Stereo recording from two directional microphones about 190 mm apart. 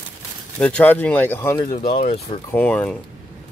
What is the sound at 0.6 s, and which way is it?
Speech, 5° left (ahead or behind).